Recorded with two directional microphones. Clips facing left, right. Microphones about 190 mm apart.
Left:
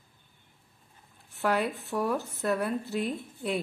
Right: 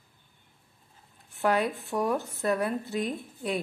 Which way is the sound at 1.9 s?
20° right (ahead or behind).